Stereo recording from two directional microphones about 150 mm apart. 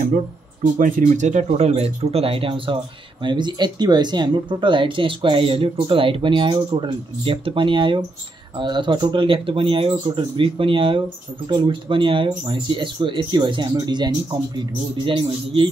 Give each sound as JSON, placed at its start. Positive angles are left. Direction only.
{"t": 0.7, "sound": "speech", "side_deg": -65}